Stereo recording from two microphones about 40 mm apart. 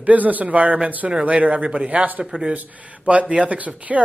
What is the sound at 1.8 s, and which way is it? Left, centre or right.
Speech, right.